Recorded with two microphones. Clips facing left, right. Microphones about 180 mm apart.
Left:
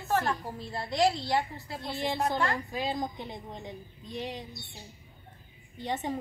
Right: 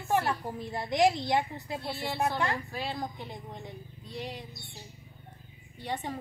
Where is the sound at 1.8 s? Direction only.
20° left (ahead or behind).